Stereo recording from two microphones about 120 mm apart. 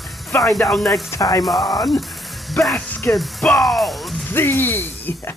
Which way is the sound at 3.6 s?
Centre (ahead or behind).